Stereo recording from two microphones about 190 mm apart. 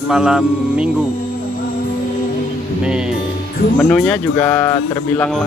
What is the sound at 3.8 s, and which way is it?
Speech, 5° left (ahead or behind).